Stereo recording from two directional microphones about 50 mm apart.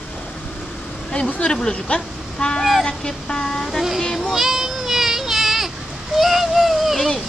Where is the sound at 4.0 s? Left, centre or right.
Centre.